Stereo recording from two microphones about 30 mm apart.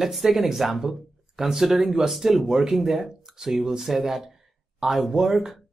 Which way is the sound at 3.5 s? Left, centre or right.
Centre.